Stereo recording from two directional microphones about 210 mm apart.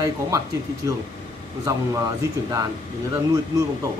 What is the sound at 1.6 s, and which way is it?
A man's voice, 15° right (ahead or behind).